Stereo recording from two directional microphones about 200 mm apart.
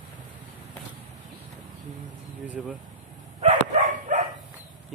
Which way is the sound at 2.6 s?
Centre (ahead or behind).